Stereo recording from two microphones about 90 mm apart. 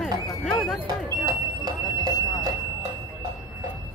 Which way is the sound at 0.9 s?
45° right (ahead or behind).